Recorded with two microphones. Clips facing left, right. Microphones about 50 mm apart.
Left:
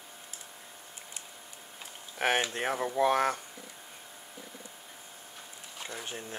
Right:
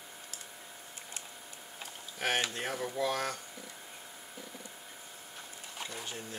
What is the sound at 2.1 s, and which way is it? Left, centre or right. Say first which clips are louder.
Speech: left 4 dB; left.